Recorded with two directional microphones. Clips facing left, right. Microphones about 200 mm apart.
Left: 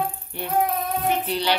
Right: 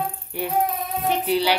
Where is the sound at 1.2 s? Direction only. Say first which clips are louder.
Right 4 dB; 10° right (ahead or behind).